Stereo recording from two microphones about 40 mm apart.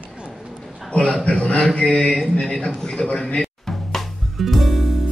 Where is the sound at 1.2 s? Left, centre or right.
Left.